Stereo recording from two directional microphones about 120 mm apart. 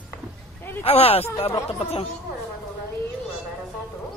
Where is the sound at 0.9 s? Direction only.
55° left (ahead or behind).